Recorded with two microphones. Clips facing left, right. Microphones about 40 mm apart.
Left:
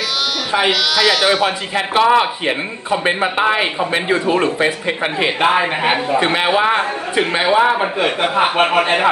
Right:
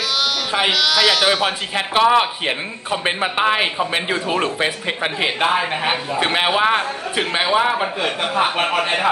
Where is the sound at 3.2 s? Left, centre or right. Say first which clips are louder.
Left 2 dB; centre.